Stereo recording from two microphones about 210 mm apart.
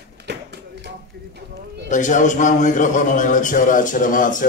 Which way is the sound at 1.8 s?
35° left (ahead or behind).